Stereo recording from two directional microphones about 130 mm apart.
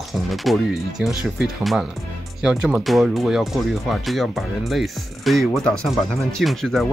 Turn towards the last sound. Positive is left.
turn(degrees=0)  # may be behind; listen again after turning